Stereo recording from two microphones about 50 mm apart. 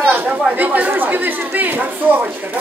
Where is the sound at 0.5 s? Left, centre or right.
Right.